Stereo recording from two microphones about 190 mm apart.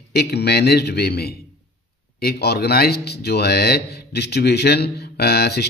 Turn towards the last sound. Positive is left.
turn(degrees=60)  # may be behind; listen again after turning